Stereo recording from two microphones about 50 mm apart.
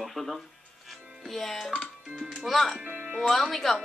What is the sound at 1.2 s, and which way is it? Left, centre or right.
Speech, centre.